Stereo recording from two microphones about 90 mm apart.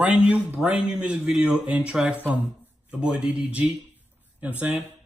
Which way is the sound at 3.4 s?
15° right (ahead or behind).